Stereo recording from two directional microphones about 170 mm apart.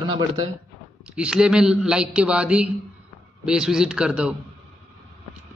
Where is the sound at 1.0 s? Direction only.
5° right (ahead or behind).